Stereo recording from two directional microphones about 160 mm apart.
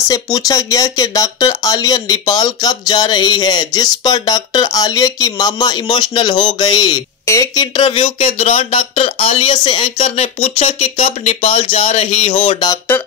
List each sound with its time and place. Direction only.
0.1 s speech: 20° left (ahead or behind)